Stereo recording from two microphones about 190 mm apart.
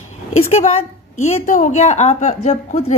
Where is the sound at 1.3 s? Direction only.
40° left (ahead or behind).